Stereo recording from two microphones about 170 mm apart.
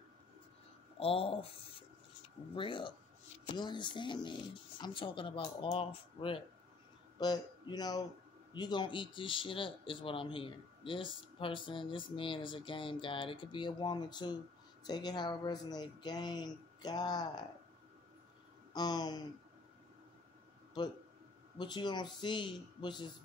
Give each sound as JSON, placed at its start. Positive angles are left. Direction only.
{"t": 0.9, "sound": "a man's voice", "side_deg": 35}
{"t": 18.7, "sound": "speech", "side_deg": 25}
{"t": 21.5, "sound": "speech", "side_deg": 25}